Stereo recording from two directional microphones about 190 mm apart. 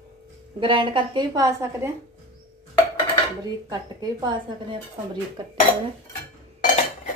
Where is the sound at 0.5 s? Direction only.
25° right (ahead or behind).